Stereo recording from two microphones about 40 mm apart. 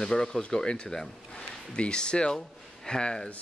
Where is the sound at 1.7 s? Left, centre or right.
Left.